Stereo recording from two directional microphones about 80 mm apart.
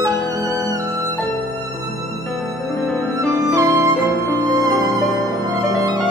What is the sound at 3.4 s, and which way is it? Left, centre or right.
Music, right.